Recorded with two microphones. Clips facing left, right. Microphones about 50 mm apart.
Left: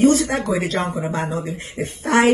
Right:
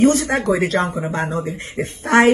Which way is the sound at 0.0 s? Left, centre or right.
Right.